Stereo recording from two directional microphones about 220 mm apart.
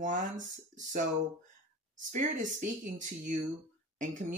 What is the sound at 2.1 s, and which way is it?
Speech, 35° right (ahead or behind).